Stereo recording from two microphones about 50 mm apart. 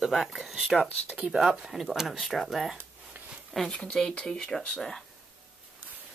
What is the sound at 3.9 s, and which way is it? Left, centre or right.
Speech, centre.